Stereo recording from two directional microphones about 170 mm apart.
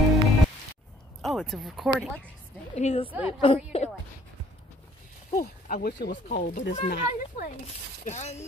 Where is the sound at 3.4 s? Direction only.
35° left (ahead or behind).